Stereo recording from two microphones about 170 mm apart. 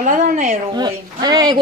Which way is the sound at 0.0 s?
50° right (ahead or behind).